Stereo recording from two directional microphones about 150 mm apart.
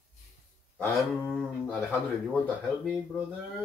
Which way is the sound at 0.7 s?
5° left (ahead or behind).